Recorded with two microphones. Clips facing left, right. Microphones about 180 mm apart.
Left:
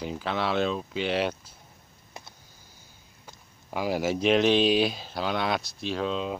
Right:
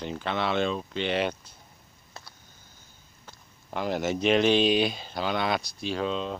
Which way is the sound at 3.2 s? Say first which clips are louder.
Left 1 dB; 10° left (ahead or behind).